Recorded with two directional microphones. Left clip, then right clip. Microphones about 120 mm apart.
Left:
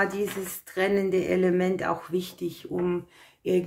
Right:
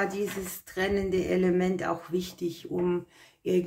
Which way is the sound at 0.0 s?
20° left (ahead or behind).